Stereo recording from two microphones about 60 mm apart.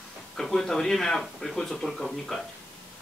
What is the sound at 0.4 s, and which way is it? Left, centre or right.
A man's voice, centre.